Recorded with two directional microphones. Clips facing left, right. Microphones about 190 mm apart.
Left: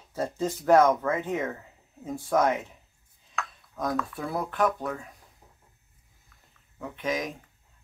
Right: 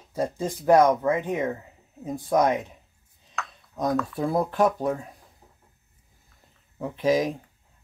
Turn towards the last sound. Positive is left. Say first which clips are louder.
# right 8 dB
turn(degrees=-35)  # may be behind; listen again after turning